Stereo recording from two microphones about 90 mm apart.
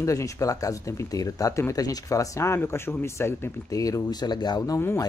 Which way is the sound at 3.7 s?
40° left (ahead or behind).